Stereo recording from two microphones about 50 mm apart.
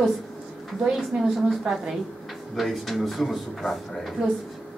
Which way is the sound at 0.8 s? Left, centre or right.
Centre.